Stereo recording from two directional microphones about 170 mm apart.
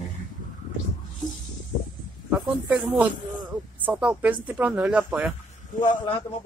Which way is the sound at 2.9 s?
10° right (ahead or behind).